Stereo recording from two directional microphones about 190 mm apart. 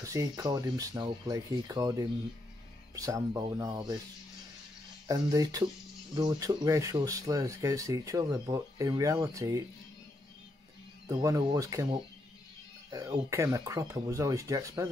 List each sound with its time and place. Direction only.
0.0 s speech: 15° right (ahead or behind)
5.0 s speech: 20° right (ahead or behind)
11.1 s speech: 15° right (ahead or behind)